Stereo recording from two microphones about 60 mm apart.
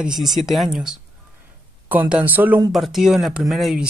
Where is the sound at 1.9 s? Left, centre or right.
Right.